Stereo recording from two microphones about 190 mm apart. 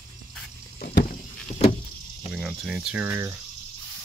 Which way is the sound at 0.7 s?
45° left (ahead or behind).